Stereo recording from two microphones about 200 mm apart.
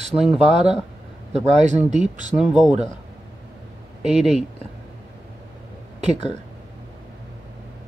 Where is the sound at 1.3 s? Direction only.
35° right (ahead or behind).